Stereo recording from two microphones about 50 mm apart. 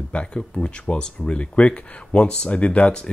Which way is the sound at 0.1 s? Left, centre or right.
Left.